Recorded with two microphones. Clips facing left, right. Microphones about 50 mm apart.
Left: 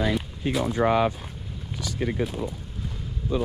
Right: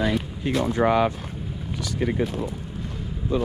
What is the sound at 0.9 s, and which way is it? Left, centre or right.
Speech, right.